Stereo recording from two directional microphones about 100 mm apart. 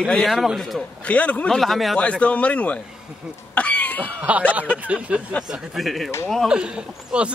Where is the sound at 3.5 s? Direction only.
15° left (ahead or behind).